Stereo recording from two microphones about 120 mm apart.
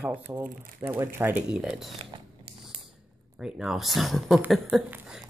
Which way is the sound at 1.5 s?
5° right (ahead or behind).